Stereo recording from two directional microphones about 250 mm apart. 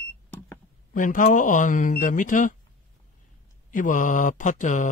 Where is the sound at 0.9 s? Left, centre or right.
Left.